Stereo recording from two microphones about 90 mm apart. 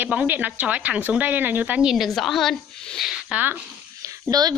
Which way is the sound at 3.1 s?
15° right (ahead or behind).